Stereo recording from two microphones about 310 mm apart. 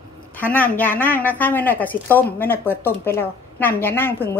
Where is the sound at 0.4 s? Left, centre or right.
Centre.